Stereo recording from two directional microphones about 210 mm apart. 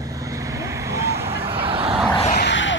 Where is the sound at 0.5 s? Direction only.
15° right (ahead or behind).